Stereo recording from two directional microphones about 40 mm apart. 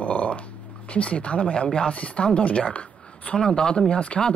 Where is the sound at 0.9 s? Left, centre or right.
Left.